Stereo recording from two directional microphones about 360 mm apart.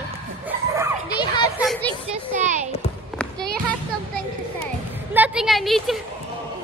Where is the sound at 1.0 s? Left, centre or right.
Centre.